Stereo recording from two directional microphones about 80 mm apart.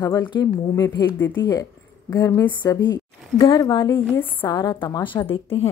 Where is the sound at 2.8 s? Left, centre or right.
Left.